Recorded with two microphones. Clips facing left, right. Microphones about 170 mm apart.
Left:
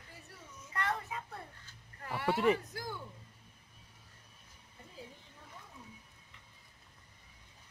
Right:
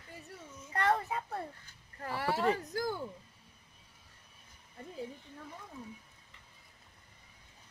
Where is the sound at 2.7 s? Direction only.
45° right (ahead or behind).